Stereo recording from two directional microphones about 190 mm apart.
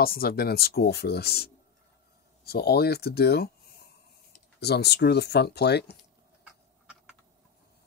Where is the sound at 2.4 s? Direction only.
55° left (ahead or behind).